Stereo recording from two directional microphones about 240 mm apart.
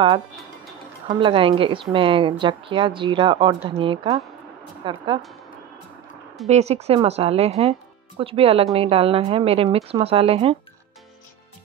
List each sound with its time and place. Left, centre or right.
1.0 s a woman's voice: right
6.4 s a woman's voice: right